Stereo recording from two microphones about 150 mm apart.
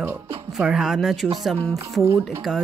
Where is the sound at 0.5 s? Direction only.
Centre (ahead or behind).